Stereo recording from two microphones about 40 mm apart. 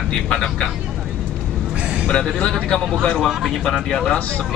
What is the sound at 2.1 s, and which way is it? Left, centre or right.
Speech, centre.